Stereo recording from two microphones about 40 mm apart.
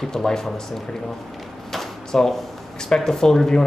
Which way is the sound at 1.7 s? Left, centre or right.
Centre.